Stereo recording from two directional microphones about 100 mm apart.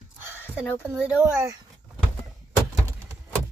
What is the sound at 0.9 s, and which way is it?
Speech, 15° right (ahead or behind).